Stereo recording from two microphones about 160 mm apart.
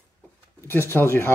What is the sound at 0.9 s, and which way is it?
Speech, 15° left (ahead or behind).